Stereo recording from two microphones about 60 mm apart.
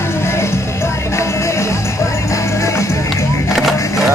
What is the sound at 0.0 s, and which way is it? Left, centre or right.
Music, left.